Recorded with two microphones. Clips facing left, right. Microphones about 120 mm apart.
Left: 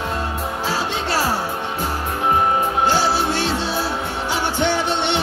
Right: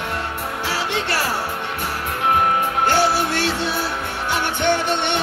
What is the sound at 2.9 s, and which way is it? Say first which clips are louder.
Music: even; 60° right (ahead or behind).